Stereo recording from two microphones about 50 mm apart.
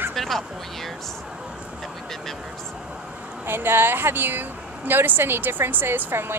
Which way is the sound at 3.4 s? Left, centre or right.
Right.